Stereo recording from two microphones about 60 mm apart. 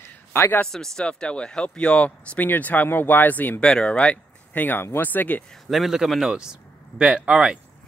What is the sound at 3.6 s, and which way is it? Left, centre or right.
Speech, centre.